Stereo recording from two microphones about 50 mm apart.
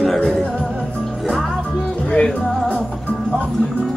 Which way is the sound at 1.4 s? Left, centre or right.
Centre.